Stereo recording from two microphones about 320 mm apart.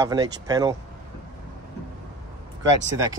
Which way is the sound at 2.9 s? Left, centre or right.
Centre.